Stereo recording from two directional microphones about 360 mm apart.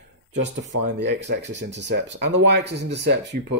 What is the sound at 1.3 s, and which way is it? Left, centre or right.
Speech, right.